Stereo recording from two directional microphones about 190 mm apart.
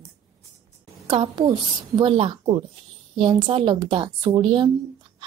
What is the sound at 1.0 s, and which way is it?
A woman's voice, 25° right (ahead or behind).